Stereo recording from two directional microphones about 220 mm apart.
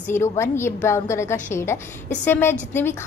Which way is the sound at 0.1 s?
10° left (ahead or behind).